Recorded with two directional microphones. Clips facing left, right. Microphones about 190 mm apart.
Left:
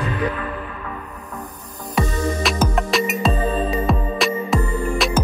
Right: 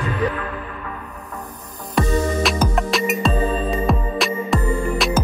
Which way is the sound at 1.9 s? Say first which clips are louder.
Right 2 dB; centre (ahead or behind).